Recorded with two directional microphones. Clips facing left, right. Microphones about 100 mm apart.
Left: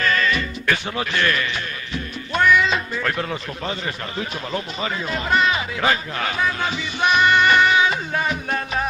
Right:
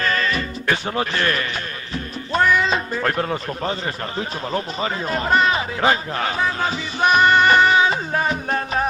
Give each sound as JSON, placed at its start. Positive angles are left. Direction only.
{"t": 0.0, "sound": "music", "side_deg": -35}
{"t": 2.3, "sound": "a man's voice", "side_deg": -35}